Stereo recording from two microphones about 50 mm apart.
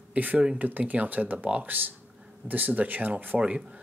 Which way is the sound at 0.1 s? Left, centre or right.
Right.